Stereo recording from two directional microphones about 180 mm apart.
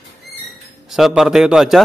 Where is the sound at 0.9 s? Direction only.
Centre (ahead or behind).